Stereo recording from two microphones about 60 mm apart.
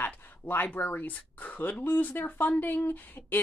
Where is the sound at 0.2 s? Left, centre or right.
Left.